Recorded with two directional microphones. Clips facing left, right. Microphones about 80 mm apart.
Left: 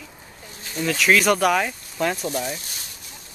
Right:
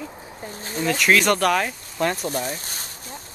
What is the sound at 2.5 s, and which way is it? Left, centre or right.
Speech, right.